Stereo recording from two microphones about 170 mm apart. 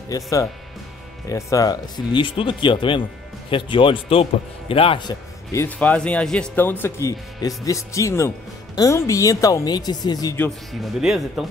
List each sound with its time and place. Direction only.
0.1 s a man's voice: 20° left (ahead or behind)
5.5 s speech: 10° left (ahead or behind)
10.7 s speech: centre (ahead or behind)